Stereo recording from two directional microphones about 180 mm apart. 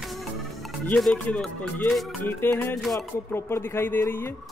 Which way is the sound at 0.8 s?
5° left (ahead or behind).